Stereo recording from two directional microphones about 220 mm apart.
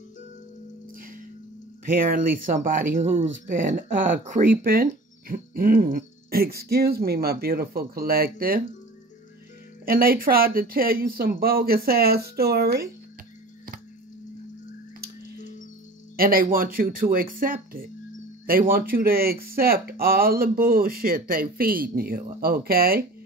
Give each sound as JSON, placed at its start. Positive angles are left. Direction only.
{"t": 1.9, "sound": "speech", "side_deg": -40}
{"t": 9.8, "sound": "speech", "side_deg": -40}
{"t": 16.2, "sound": "speech", "side_deg": -40}